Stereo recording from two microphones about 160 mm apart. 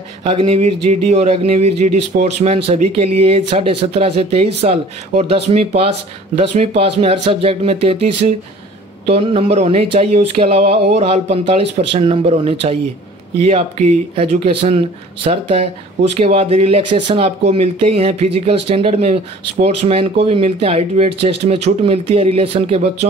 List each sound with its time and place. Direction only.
0.2 s speech: 35° right (ahead or behind)